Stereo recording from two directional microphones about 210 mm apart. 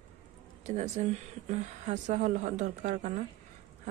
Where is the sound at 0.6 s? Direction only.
35° right (ahead or behind).